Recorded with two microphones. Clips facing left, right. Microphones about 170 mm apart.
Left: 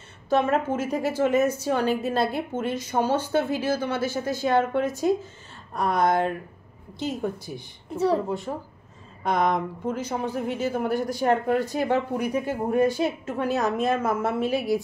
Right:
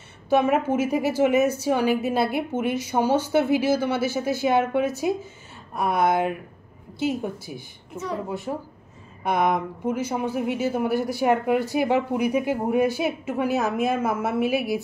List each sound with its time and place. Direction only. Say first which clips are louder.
0.3 s speech: right 2 dB; 10° right (ahead or behind)
7.9 s a woman's voice: left 8 dB; 35° left (ahead or behind)
8.3 s speech: even; 5° right (ahead or behind)